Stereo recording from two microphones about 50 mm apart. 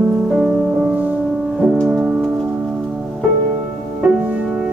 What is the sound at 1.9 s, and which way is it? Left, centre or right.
Music, centre.